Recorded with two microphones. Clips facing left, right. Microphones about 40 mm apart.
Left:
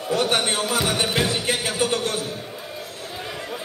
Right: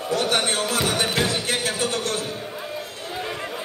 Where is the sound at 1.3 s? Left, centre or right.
Centre.